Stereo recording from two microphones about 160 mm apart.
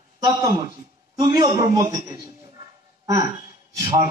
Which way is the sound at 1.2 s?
25° right (ahead or behind).